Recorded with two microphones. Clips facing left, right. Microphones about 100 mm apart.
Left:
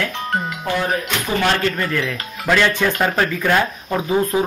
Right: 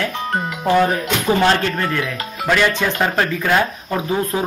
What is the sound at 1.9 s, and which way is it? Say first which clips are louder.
Speech: even; 10° right (ahead or behind).